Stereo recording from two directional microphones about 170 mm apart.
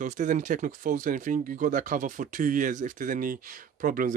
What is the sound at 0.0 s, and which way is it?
Speech, 45° right (ahead or behind).